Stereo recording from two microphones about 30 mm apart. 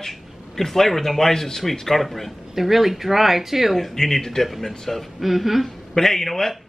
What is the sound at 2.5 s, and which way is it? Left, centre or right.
Speech, centre.